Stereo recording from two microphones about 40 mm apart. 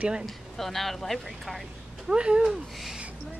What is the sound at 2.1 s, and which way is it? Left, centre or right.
Speech, right.